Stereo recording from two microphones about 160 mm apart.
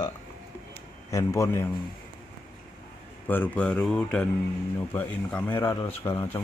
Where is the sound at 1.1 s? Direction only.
20° left (ahead or behind).